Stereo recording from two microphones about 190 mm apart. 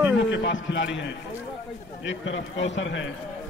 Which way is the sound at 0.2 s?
75° left (ahead or behind).